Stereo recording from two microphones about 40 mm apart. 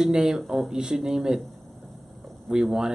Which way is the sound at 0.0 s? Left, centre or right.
Centre.